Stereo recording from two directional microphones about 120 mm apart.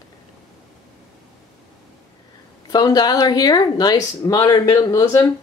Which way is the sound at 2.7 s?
35° left (ahead or behind).